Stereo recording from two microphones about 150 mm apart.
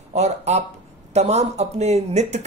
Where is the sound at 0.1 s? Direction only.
45° right (ahead or behind).